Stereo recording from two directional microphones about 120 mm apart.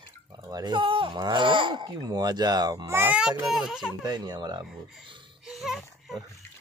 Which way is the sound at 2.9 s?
15° right (ahead or behind).